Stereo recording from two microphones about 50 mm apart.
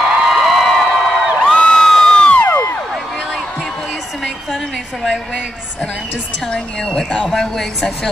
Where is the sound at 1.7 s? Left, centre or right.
Centre.